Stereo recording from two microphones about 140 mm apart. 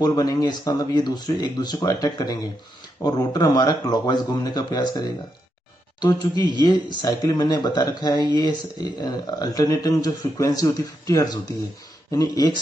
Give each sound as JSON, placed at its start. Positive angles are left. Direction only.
{"t": 0.0, "sound": "speech", "side_deg": 30}